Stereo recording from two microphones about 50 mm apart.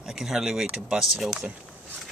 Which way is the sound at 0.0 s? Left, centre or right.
Centre.